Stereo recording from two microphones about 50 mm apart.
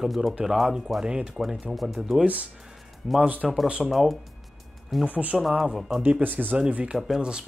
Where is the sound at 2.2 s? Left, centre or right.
Right.